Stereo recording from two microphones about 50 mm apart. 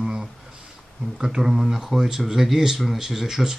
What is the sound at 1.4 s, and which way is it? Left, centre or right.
Speech, centre.